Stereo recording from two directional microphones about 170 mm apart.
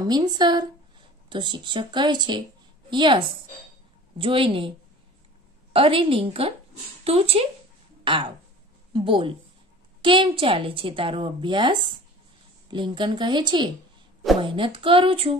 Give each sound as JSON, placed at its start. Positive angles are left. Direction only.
{"t": 0.0, "sound": "a woman's voice", "side_deg": -25}